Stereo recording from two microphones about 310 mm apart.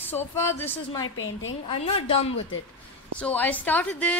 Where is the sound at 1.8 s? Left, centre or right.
Centre.